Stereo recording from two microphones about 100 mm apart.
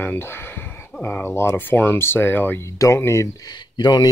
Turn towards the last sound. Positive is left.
turn(degrees=45)  # may be behind; listen again after turning